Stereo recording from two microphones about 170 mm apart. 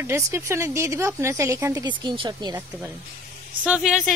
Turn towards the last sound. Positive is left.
turn(degrees=-5)  # may be behind; listen again after turning